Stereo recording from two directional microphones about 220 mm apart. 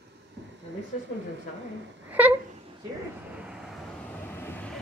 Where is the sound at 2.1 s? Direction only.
10° right (ahead or behind).